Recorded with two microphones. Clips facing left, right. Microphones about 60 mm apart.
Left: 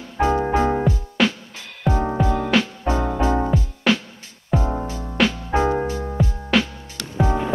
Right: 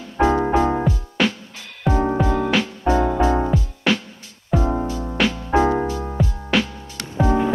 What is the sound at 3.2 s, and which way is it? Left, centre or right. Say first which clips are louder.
Music: right 2 dB; right.